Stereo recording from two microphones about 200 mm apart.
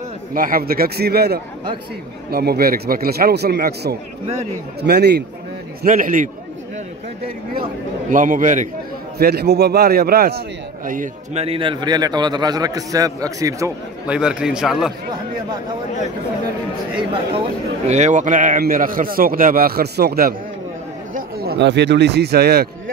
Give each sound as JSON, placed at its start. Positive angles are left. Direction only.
{"t": 0.3, "sound": "a man's voice", "side_deg": -45}
{"t": 5.8, "sound": "a man's voice", "side_deg": -45}
{"t": 8.1, "sound": "a man's voice", "side_deg": -40}
{"t": 9.2, "sound": "a man's voice", "side_deg": -50}
{"t": 11.4, "sound": "a man's voice", "side_deg": -25}
{"t": 14.0, "sound": "a man's voice", "side_deg": -5}
{"t": 17.8, "sound": "a man's voice", "side_deg": -35}